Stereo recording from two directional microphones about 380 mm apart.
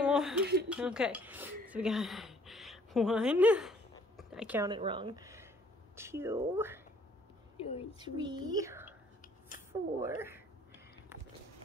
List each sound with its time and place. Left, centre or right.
0.0 s a sound: centre
0.7 s a woman's voice: centre
7.6 s speech: centre
8.0 s speech: centre
10.0 s speech: centre